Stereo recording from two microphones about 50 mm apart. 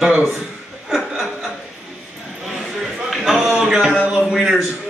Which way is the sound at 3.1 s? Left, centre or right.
Centre.